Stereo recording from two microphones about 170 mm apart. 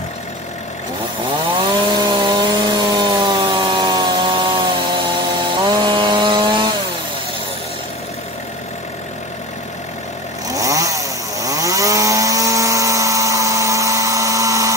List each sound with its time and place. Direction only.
1.6 s chainsaw: 25° right (ahead or behind)
10.5 s chainsaw: 20° right (ahead or behind)